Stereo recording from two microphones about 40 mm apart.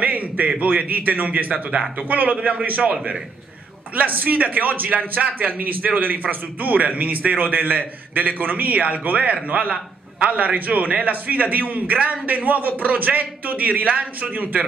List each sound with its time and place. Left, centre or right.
0.0 s a sound: right
0.6 s a man's voice: right
3.9 s a man's voice: right